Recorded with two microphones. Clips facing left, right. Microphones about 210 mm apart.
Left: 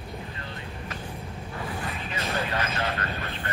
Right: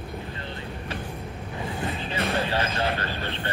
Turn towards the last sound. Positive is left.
turn(degrees=-30)  # may be behind; listen again after turning